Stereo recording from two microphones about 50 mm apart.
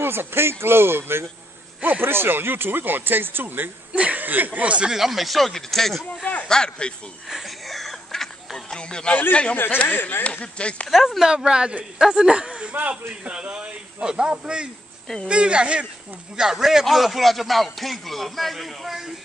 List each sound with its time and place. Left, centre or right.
0.0 s speech: right
3.9 s speech: right
4.9 s speech: centre
7.2 s a sound: centre
8.7 s speech: centre
9.1 s speech: left
10.4 s speech: left
10.9 s speech: centre; by 15.9 s right
16.3 s speech: centre